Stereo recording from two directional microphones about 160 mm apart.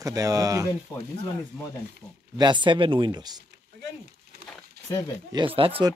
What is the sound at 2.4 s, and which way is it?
Speech, 30° right (ahead or behind).